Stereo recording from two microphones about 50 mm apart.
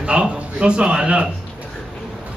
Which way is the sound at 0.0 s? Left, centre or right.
Right.